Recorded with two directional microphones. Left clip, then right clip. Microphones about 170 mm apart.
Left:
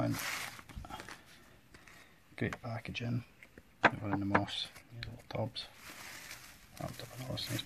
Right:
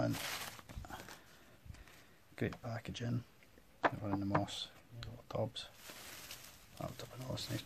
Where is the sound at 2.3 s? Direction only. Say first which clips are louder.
Left 3 dB; 5° right (ahead or behind).